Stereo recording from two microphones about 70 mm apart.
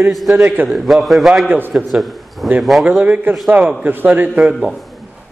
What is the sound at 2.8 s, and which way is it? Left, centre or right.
A man's voice, centre.